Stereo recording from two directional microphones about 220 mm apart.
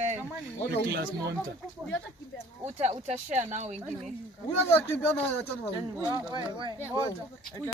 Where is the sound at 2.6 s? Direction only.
30° right (ahead or behind).